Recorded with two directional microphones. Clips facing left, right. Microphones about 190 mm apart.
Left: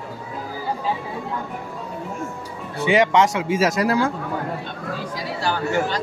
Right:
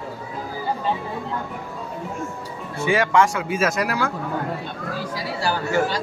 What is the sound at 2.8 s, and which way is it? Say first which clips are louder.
Speech: left 2 dB; 20° left (ahead or behind).